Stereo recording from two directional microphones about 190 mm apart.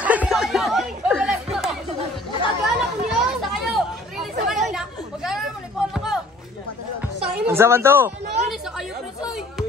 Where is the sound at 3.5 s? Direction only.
Centre (ahead or behind).